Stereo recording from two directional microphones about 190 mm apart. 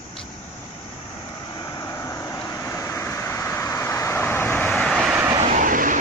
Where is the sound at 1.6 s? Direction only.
20° left (ahead or behind); by 5.2 s centre (ahead or behind).